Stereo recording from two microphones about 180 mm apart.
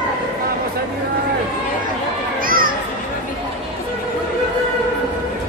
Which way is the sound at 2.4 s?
50° right (ahead or behind).